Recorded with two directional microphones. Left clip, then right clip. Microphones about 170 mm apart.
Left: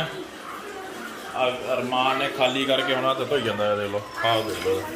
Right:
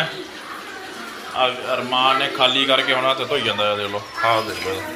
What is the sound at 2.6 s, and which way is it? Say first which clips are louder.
A man's voice: right 5 dB; 15° left (ahead or behind).